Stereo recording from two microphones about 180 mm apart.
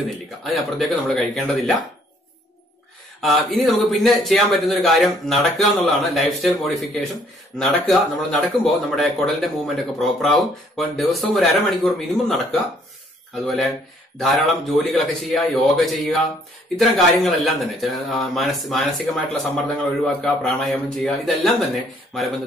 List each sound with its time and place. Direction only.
0.4 s speech: centre (ahead or behind)
3.2 s speech: centre (ahead or behind)
14.2 s speech: centre (ahead or behind)